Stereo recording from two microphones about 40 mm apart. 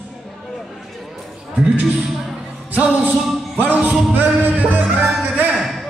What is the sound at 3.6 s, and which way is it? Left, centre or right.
Music, right.